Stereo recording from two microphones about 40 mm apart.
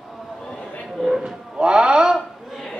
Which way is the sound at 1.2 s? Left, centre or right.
Right.